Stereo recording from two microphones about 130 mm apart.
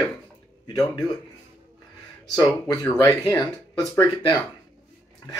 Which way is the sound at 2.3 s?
25° left (ahead or behind).